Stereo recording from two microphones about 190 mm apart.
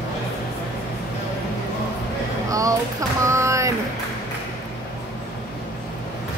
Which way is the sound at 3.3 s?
15° right (ahead or behind).